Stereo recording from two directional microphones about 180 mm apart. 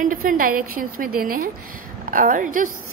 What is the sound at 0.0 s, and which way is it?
A woman's voice, 50° right (ahead or behind).